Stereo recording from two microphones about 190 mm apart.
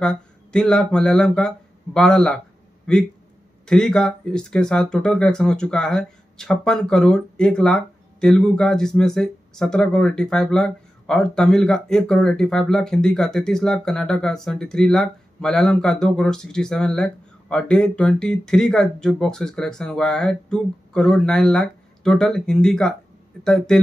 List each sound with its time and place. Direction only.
0.0 s speech: 5° left (ahead or behind)
3.6 s speech: 5° left (ahead or behind)